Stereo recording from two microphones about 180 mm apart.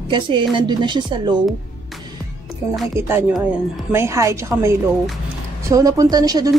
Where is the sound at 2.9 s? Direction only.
15° right (ahead or behind).